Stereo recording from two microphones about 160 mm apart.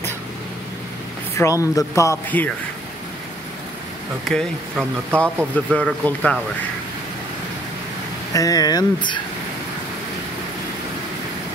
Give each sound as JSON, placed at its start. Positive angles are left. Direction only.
{"t": 1.4, "sound": "speech", "side_deg": 20}
{"t": 4.3, "sound": "speech", "side_deg": 5}
{"t": 8.3, "sound": "speech", "side_deg": 20}